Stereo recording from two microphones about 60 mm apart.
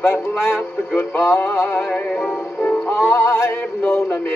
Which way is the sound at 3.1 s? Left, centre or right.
Left.